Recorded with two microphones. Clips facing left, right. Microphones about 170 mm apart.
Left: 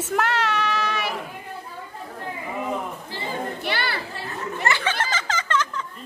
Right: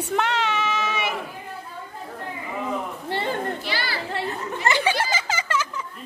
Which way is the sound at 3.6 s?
60° left (ahead or behind).